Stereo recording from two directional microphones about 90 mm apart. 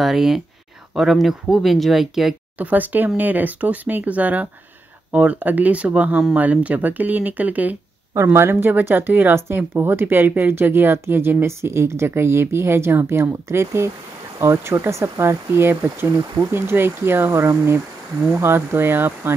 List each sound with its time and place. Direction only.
0.0 s speech: 5° right (ahead or behind)
2.6 s speech: 20° right (ahead or behind)
8.1 s speech: 30° right (ahead or behind)